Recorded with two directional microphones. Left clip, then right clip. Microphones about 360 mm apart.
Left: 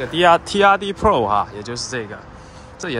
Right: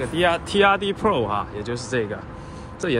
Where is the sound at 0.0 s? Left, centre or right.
Left.